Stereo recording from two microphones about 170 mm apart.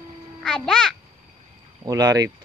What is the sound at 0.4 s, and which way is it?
Speech, 5° left (ahead or behind).